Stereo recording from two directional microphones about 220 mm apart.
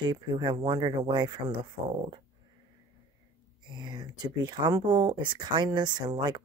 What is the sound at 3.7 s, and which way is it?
Speech, 20° right (ahead or behind).